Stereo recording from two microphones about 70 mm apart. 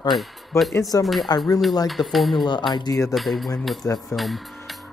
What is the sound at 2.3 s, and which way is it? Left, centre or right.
Speech, left.